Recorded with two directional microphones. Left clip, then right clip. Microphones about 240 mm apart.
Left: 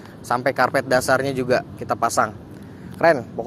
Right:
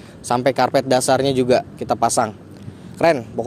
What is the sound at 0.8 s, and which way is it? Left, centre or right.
Speech, right.